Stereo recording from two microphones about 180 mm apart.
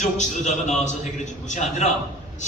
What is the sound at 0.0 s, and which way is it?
A man's voice, 40° left (ahead or behind).